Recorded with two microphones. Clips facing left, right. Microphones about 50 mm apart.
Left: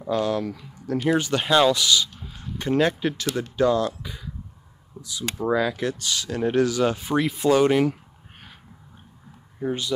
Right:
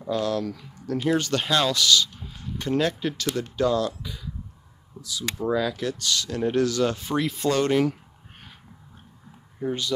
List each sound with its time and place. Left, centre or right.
0.0 s speech: centre
5.0 s a sound: left
5.5 s speech: left
9.6 s speech: centre